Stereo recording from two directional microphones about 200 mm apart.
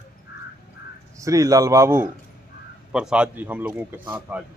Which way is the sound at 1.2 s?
15° right (ahead or behind).